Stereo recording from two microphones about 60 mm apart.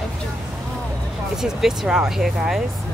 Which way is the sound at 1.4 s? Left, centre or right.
Centre.